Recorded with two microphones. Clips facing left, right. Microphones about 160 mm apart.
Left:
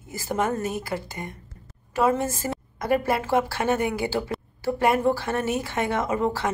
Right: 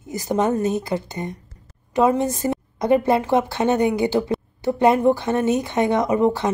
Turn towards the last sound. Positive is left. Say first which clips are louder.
# right 6 dB
turn(degrees=-20)  # may be behind; listen again after turning